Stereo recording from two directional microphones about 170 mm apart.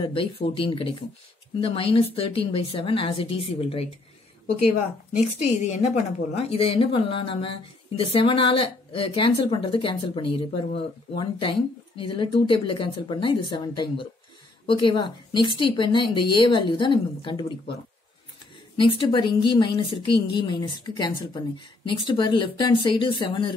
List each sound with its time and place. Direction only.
0.0 s a woman's voice: 30° left (ahead or behind)
5.1 s a woman's voice: 40° left (ahead or behind)
18.8 s a woman's voice: 30° left (ahead or behind)